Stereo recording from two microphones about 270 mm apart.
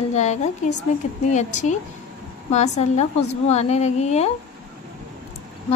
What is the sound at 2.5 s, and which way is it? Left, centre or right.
Speech, left.